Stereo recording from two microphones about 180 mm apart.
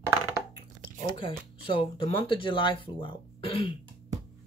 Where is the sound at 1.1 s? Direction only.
30° left (ahead or behind).